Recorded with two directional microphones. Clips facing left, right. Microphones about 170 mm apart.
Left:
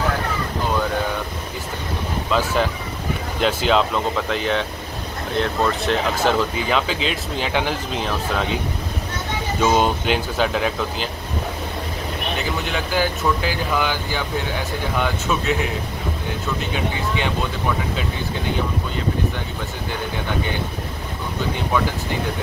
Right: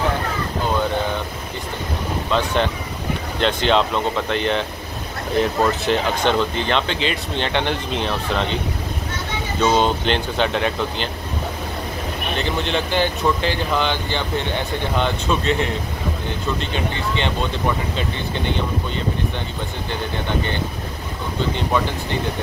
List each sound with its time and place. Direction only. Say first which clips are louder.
2.3 s speech: even; 5° left (ahead or behind)
9.6 s speech: right 1 dB; 5° left (ahead or behind)
12.4 s speech: right 5 dB; 5° left (ahead or behind)
16.7 s speech: even; 10° left (ahead or behind)